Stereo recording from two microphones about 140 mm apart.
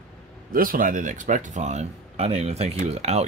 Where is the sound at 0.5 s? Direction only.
85° right.